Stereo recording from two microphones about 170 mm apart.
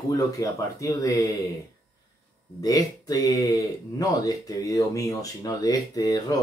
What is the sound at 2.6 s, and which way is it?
Speech, 20° left (ahead or behind).